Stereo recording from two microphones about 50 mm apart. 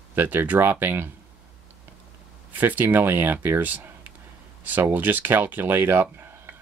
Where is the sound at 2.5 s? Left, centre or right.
Right.